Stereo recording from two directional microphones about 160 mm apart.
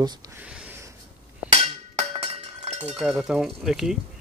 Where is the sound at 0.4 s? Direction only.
10° right (ahead or behind).